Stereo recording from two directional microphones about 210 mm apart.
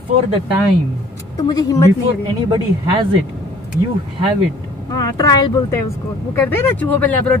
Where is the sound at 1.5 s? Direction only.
15° left (ahead or behind).